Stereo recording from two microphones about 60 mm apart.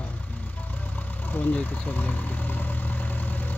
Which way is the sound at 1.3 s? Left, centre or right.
Left.